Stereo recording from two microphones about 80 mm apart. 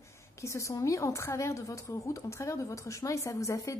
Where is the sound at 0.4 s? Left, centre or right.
Left.